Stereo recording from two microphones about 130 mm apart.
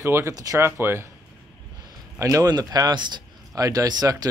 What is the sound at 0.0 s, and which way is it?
Speech, 20° right (ahead or behind).